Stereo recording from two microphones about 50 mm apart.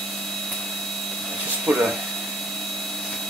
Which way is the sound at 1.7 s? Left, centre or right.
Centre.